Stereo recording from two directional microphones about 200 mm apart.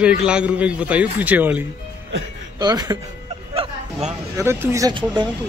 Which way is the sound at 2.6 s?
20° right (ahead or behind).